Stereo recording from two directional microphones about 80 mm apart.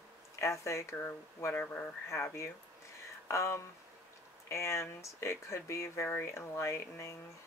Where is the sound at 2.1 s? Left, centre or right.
Left.